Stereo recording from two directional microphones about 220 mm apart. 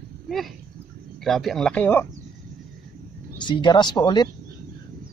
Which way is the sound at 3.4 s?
20° left (ahead or behind).